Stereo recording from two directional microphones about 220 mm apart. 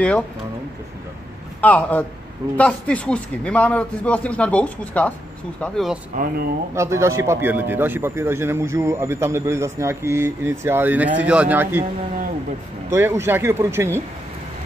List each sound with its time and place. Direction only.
1.6 s a man's voice: 5° left (ahead or behind)
6.1 s speech: 45° right (ahead or behind)
6.7 s a man's voice: 10° right (ahead or behind)
12.9 s a man's voice: 10° right (ahead or behind)